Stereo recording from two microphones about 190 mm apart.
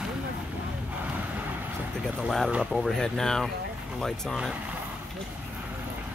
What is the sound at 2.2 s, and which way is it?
Speech, centre (ahead or behind).